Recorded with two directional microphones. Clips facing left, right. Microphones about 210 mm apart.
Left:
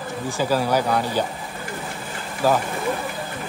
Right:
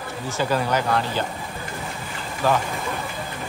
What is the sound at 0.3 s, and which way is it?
Speech, 10° left (ahead or behind).